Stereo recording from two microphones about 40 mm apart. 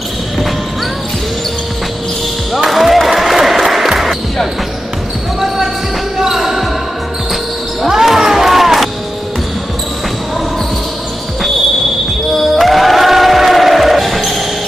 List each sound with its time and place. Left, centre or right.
2.5 s basketball bounce: centre
6.1 s basketball bounce: centre
7.8 s basketball bounce: centre
12.4 s music: centre